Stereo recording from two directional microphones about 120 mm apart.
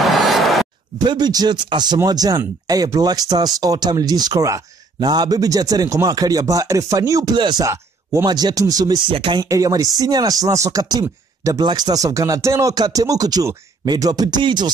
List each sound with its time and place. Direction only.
0.0 s a sound: centre (ahead or behind)
1.0 s speech: 35° right (ahead or behind)
7.6 s speech: 25° right (ahead or behind)
8.3 s speech: 35° right (ahead or behind)
9.4 s speech: 30° right (ahead or behind)